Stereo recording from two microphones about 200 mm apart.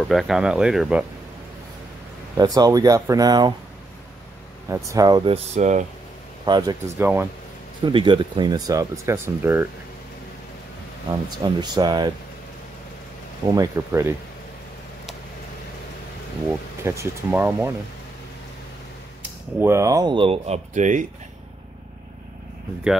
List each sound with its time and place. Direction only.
0.1 s speech: centre (ahead or behind)
2.3 s speech: 20° right (ahead or behind)
4.6 s speech: 15° right (ahead or behind); by 5.9 s 35° right (ahead or behind)
6.4 s speech: 20° right (ahead or behind)
11.1 s speech: 20° right (ahead or behind)
13.5 s speech: 15° right (ahead or behind)
16.8 s speech: 15° right (ahead or behind)
19.6 s speech: 15° right (ahead or behind); by 21.1 s 40° right (ahead or behind)